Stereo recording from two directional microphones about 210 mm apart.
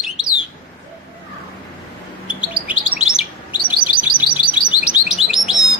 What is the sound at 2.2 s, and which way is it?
Chirp, 5° right (ahead or behind).